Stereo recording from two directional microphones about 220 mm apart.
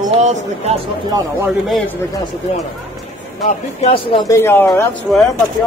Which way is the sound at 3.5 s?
25° left (ahead or behind).